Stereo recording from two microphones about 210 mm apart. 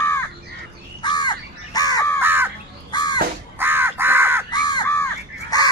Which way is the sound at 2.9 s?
20° left (ahead or behind).